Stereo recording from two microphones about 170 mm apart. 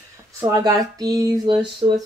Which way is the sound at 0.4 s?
20° right (ahead or behind).